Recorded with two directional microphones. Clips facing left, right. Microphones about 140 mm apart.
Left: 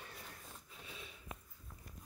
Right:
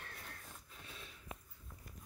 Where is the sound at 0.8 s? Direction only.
5° left (ahead or behind).